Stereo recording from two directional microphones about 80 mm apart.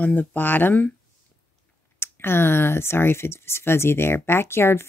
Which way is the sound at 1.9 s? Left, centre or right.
Left.